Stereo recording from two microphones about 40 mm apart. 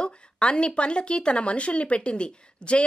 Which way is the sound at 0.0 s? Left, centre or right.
Left.